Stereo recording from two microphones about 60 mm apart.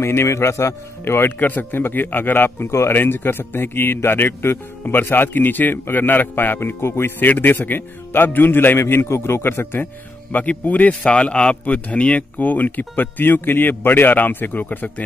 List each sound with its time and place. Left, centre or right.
0.0 s a man's voice: left
6.8 s a man's voice: left
8.7 s a man's voice: left
10.3 s a man's voice: left